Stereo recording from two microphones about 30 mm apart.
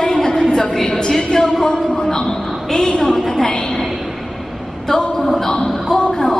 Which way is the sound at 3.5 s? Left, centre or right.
Left.